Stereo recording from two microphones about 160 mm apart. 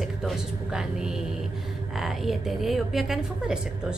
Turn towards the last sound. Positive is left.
turn(degrees=0)  # may be behind; listen again after turning